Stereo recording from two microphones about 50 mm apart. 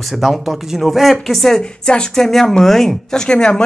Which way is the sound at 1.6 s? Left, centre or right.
Centre.